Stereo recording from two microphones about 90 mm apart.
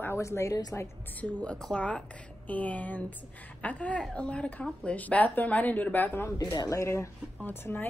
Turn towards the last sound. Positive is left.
turn(degrees=25)  # may be behind; listen again after turning